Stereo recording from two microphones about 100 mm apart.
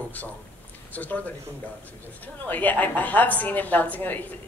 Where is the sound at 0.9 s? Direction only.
15° left (ahead or behind).